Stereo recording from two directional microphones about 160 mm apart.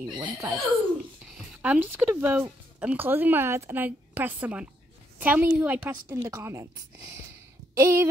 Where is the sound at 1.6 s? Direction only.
10° right (ahead or behind).